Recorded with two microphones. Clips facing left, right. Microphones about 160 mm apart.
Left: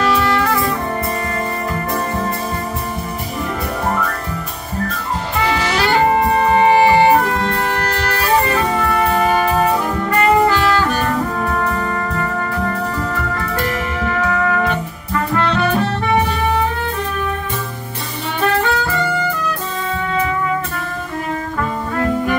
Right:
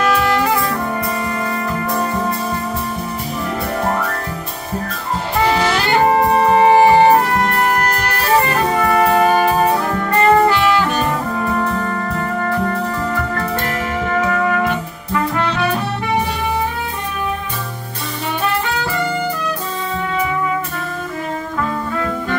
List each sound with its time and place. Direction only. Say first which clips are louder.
6.5 s music: right 2 dB; 35° right (ahead or behind)
11.4 s brass instrument: right 1 dB; centre (ahead or behind)
15.5 s music: left 2 dB; 10° right (ahead or behind)